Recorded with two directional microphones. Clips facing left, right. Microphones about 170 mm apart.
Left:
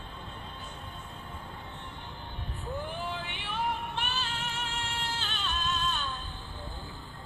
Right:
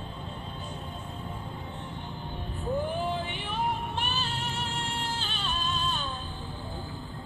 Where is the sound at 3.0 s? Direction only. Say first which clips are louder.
Right 5 dB; 35° right (ahead or behind).